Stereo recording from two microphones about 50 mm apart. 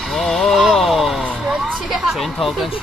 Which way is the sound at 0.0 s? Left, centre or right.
Centre.